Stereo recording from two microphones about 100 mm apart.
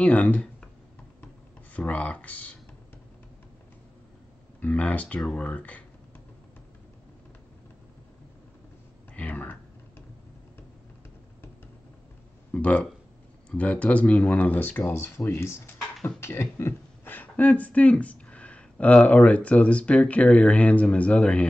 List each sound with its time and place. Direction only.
0.0 s speech: 15° left (ahead or behind)
1.7 s speech: 15° left (ahead or behind)
4.6 s speech: 15° left (ahead or behind)
9.1 s typing: 15° left (ahead or behind)
12.5 s speech: 15° left (ahead or behind)